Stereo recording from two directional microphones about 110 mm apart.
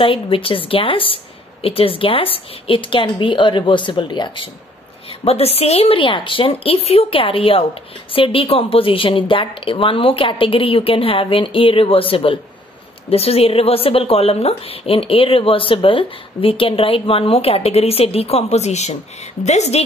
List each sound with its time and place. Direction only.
0.0 s a woman's voice: 55° left (ahead or behind)
5.2 s a woman's voice: 65° left (ahead or behind); by 19.8 s 90° left